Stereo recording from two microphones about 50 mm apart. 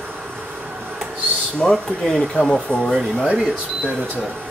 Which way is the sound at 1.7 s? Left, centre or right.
Centre.